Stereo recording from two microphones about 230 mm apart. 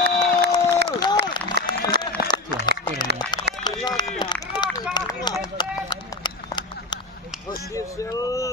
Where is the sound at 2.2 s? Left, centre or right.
Centre.